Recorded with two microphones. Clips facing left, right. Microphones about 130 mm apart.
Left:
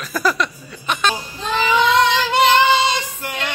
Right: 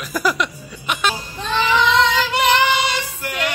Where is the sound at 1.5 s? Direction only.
10° left (ahead or behind).